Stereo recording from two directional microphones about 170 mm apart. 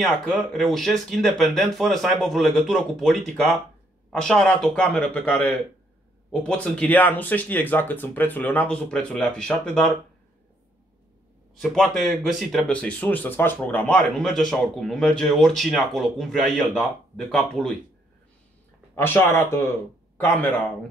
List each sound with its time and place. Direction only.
0.0 s speech: centre (ahead or behind)
11.5 s speech: centre (ahead or behind)
18.9 s speech: 15° left (ahead or behind)